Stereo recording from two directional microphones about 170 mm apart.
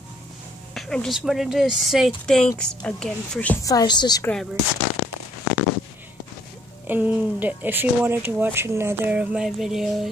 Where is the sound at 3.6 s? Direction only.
20° left (ahead or behind).